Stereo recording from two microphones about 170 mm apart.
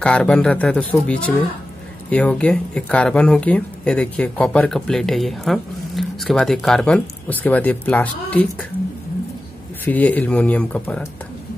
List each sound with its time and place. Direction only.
0.0 s speech: 5° left (ahead or behind)
9.8 s speech: 10° left (ahead or behind)